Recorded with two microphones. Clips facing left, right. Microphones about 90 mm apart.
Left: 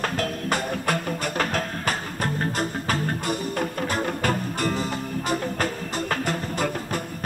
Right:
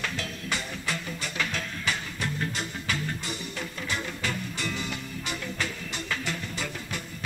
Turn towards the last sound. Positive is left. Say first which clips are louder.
# left 8 dB
turn(degrees=45)  # may be behind; listen again after turning